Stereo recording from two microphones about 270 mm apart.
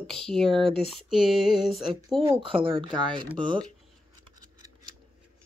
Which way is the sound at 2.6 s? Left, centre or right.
Centre.